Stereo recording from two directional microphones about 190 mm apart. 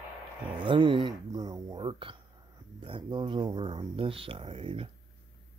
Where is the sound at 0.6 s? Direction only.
25° right (ahead or behind).